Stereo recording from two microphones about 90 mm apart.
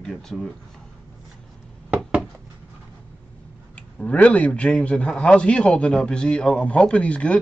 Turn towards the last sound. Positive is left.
turn(degrees=15)  # may be behind; listen again after turning